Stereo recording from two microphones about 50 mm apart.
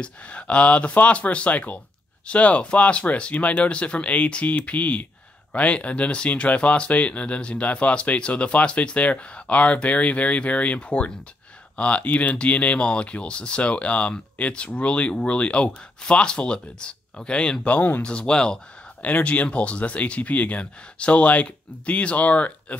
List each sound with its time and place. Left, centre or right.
0.0 s speech: left
17.7 s speech: left
18.0 s speech: left
19.0 s speech: left